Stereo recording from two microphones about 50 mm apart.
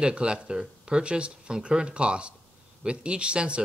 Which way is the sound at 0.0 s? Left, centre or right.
Centre.